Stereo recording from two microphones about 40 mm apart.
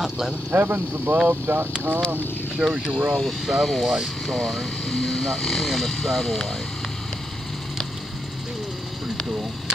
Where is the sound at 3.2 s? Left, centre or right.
Centre.